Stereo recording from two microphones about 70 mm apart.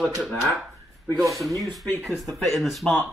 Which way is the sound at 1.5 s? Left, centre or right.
Right.